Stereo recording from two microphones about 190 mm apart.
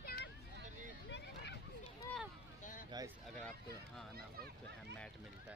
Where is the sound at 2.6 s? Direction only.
45° left (ahead or behind).